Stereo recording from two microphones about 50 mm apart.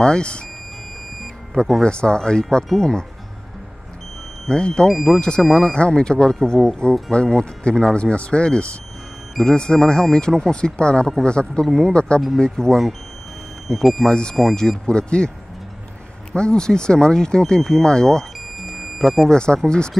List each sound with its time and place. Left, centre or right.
0.0 s speech: centre
1.8 s speech: centre
4.5 s speech: centre
4.8 s speech: centre
5.2 s speech: centre
14.0 s speech: centre
16.3 s speech: centre
18.8 s music: centre
19.2 s speech: centre